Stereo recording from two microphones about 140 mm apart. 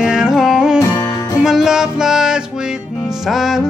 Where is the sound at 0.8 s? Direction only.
20° left (ahead or behind).